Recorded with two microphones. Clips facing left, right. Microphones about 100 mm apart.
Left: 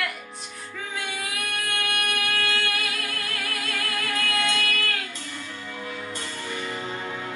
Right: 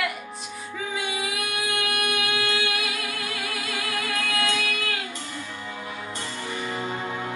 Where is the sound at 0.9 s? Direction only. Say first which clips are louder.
Right 3 dB; 5° right (ahead or behind).